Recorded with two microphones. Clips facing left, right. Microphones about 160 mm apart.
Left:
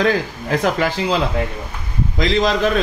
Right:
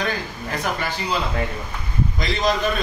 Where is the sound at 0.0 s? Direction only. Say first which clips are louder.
Left 8 dB; 90° left.